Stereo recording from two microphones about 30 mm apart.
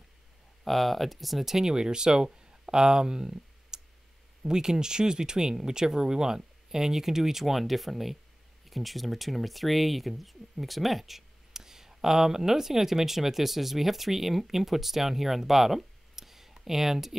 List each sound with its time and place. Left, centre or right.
0.7 s speech: centre
1.4 s speech: centre
11.5 s speech: centre